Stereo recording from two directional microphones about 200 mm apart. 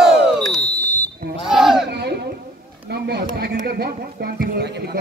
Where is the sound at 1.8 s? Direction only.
55° right (ahead or behind).